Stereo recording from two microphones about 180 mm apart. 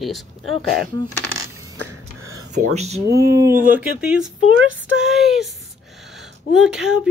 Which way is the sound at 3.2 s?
15° right (ahead or behind).